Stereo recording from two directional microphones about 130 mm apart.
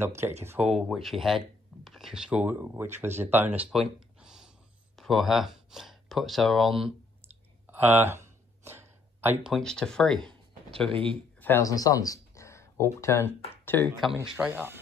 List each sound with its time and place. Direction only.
0.0 s speech: 20° right (ahead or behind)
0.7 s speech: centre (ahead or behind)
4.2 s gasp: 5° right (ahead or behind)
4.9 s speech: centre (ahead or behind)
7.7 s a sound: 15° right (ahead or behind)
9.5 s speech: 5° left (ahead or behind)
10.9 s speech: 40° right (ahead or behind)
11.4 s speech: 25° left (ahead or behind)
14.2 s speech: 5° right (ahead or behind)